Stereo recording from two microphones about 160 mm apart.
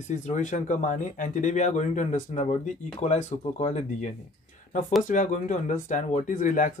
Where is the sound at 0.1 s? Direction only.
50° left (ahead or behind).